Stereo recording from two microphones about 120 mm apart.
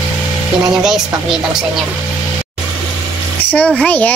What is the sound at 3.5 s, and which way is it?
Speech, 10° left (ahead or behind).